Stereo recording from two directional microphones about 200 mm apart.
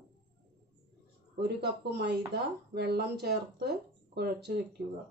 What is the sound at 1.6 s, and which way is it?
Speech, 55° right (ahead or behind).